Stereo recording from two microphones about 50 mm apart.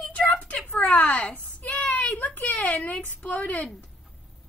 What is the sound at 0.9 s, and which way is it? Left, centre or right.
Speech, left.